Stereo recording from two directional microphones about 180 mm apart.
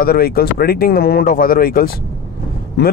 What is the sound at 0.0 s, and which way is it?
Speech, 55° left (ahead or behind).